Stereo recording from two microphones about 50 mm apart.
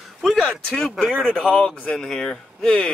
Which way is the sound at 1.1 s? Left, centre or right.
Right.